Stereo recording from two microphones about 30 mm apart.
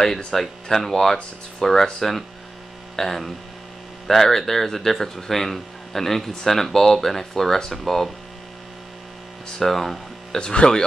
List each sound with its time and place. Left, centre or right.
0.3 s speech: centre
2.0 s speech: centre
9.6 s speech: centre
10.5 s speech: left